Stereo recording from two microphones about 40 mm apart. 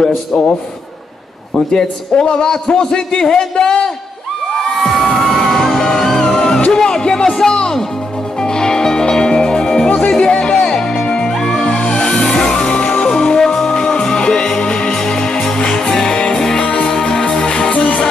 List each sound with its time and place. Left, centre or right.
0.0 s a man's voice: centre
1.7 s a man's voice: centre
4.7 s music: centre
6.7 s a man's voice: centre
8.4 s music: centre
10.6 s music: centre; by 18.0 s left